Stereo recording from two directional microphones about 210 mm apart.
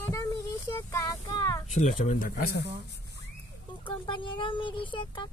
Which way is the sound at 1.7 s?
35° left (ahead or behind).